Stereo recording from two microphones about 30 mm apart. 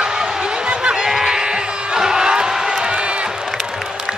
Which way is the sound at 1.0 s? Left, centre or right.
Centre.